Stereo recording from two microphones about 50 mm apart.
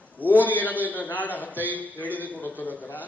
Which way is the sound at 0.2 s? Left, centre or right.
Left.